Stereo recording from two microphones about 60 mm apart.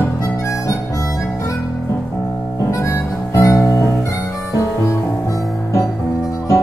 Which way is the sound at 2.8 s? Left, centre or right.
Left.